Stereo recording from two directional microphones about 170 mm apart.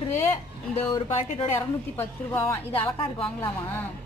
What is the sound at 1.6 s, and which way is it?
Speech, 15° left (ahead or behind).